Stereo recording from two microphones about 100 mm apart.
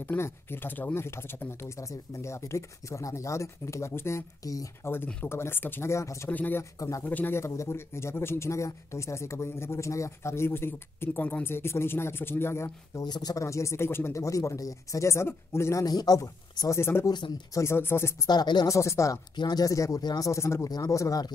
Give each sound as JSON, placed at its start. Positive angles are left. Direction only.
{"t": 0.0, "sound": "speech", "side_deg": 20}
{"t": 4.8, "sound": "speech", "side_deg": 20}
{"t": 6.3, "sound": "speech", "side_deg": 15}
{"t": 6.8, "sound": "speech", "side_deg": 35}
{"t": 7.1, "sound": "speech", "side_deg": 20}
{"t": 13.0, "sound": "speech", "side_deg": 45}
{"t": 17.1, "sound": "speech", "side_deg": 45}
{"t": 17.6, "sound": "speech", "side_deg": 25}
{"t": 18.2, "sound": "speech", "side_deg": 45}
{"t": 18.8, "sound": "speech", "side_deg": 30}
{"t": 19.3, "sound": "speech", "side_deg": 45}
{"t": 20.2, "sound": "speech", "side_deg": 30}